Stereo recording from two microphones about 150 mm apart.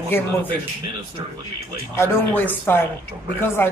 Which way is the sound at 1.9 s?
15° left (ahead or behind).